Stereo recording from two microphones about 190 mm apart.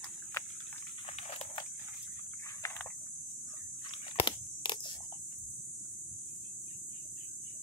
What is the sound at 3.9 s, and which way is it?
Crunch, 25° left (ahead or behind).